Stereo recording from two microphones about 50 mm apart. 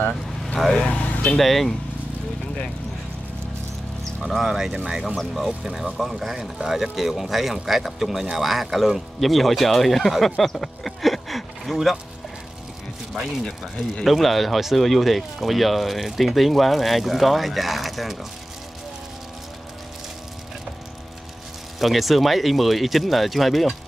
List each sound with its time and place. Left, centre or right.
0.7 s speech: left
1.4 s speech: centre
4.2 s speech: centre
5.0 s speech: centre
13.4 s speech: centre
21.7 s speech: centre